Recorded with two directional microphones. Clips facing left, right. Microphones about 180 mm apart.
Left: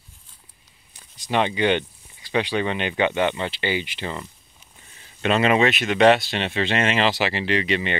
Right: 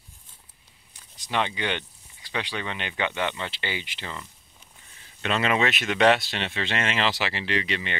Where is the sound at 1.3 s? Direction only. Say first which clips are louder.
Left 7 dB; 15° left (ahead or behind).